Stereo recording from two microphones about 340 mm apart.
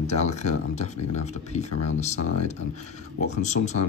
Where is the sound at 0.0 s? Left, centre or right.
Centre.